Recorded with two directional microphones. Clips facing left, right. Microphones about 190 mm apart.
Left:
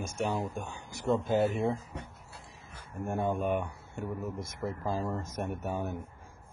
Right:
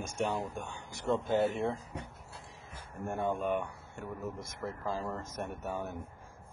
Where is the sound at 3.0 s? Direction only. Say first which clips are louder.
Left 2 dB; 10° left (ahead or behind).